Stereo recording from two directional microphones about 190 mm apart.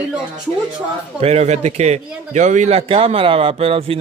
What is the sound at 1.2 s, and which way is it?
A man's voice, 35° right (ahead or behind).